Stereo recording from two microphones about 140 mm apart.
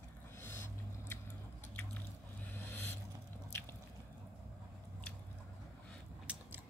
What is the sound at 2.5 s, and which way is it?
Vehicle, 15° left (ahead or behind).